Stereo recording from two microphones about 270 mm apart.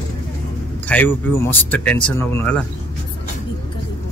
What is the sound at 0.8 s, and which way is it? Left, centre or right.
Speech, centre.